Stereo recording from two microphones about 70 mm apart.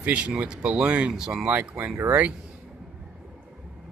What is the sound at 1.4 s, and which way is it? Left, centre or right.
Speech, right.